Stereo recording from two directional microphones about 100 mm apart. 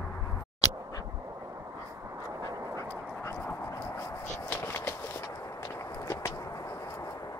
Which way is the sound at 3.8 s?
20° left (ahead or behind).